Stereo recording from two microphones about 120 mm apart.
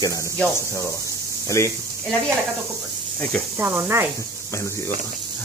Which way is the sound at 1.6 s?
25° left (ahead or behind).